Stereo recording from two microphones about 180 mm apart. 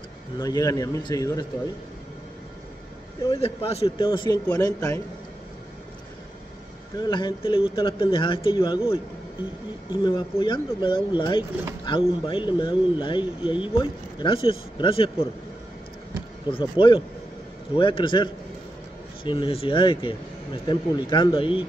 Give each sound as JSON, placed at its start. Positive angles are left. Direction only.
{"t": 0.4, "sound": "speech", "side_deg": 20}
{"t": 3.2, "sound": "speech", "side_deg": 30}
{"t": 7.0, "sound": "a man's voice", "side_deg": 25}
{"t": 16.4, "sound": "speech", "side_deg": 25}